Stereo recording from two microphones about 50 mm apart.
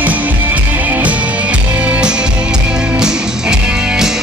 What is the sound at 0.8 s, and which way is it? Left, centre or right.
Music, right.